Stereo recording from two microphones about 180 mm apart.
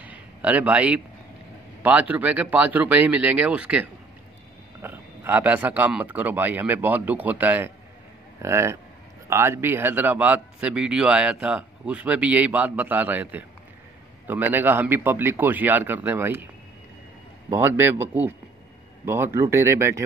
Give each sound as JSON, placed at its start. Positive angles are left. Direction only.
{"t": 0.0, "sound": "a sound", "side_deg": -10}
{"t": 1.8, "sound": "speech", "side_deg": -10}
{"t": 17.5, "sound": "speech", "side_deg": -15}